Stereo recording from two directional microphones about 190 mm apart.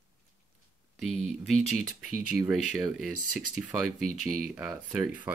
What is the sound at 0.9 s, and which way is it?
Speech, centre (ahead or behind).